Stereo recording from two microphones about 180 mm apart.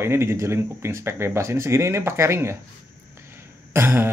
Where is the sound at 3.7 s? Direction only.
10° right (ahead or behind).